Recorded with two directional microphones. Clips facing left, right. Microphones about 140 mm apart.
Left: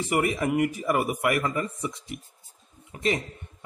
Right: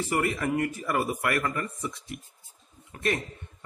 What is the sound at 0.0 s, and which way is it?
A man's voice, 15° left (ahead or behind).